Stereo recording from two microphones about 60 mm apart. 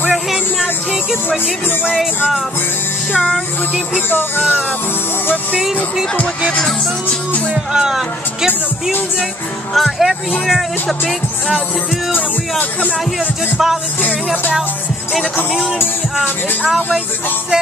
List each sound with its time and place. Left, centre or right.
0.1 s music: centre
2.0 s speech: centre
4.1 s speech: left
6.5 s music: centre
7.5 s speech: centre
9.8 s speech: centre
12.1 s speech: left
14.0 s music: left
16.2 s speech: centre